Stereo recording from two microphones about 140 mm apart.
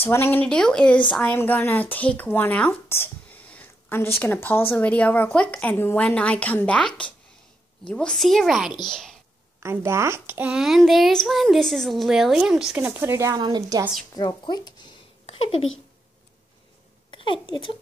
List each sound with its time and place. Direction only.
0.0 s a child's voice: 15° left (ahead or behind)
9.6 s a child's voice: 20° right (ahead or behind)
14.1 s speech: 30° left (ahead or behind)
15.2 s speech: 45° left (ahead or behind)
17.1 s speech: 35° left (ahead or behind)